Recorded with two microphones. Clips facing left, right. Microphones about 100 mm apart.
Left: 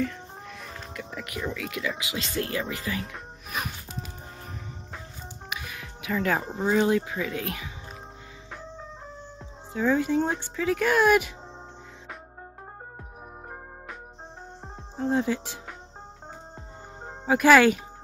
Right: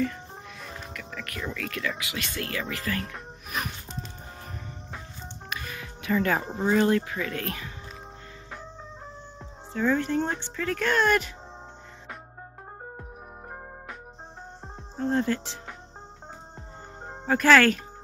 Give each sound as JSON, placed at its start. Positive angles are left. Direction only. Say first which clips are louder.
{"t": 0.0, "sound": "music", "louder": "right 1 dB", "side_deg": 0}
{"t": 0.9, "sound": "music", "louder": "left 5 dB", "side_deg": 20}
{"t": 1.4, "sound": "speech", "louder": "left 1 dB", "side_deg": 10}
{"t": 3.0, "sound": "speech", "louder": "right 1 dB", "side_deg": 0}
{"t": 3.6, "sound": "music", "louder": "even", "side_deg": 5}
{"t": 5.5, "sound": "speech", "louder": "right 1 dB", "side_deg": 5}
{"t": 9.7, "sound": "speech", "louder": "left 1 dB", "side_deg": 5}
{"t": 15.0, "sound": "speech", "louder": "even", "side_deg": 5}
{"t": 17.3, "sound": "speech", "louder": "left 2 dB", "side_deg": 10}